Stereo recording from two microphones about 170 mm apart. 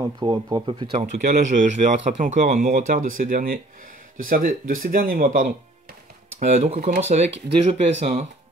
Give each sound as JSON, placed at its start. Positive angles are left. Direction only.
{"t": 0.0, "sound": "speech", "side_deg": -25}
{"t": 1.1, "sound": "speech", "side_deg": -55}